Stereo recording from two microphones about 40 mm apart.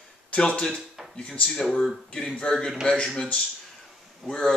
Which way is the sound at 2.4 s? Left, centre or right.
Centre.